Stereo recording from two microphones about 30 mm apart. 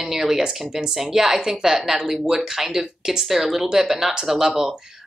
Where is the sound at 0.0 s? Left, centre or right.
Centre.